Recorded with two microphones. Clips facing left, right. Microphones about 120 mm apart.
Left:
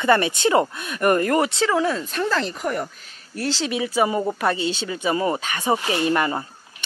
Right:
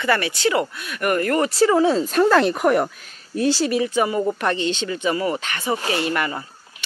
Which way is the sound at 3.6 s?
5° left (ahead or behind).